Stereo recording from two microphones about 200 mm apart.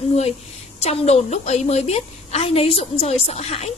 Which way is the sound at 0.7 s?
35° left (ahead or behind).